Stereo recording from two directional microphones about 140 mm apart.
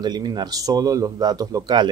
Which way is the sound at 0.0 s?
30° right (ahead or behind).